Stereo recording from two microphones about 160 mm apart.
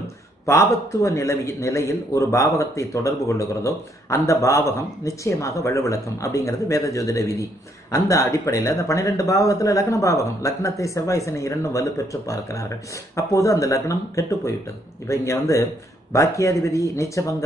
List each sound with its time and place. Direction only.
0.5 s a man's voice: 20° left (ahead or behind)